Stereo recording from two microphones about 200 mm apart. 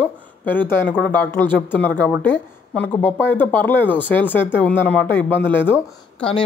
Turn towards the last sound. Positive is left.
turn(degrees=10)  # may be behind; listen again after turning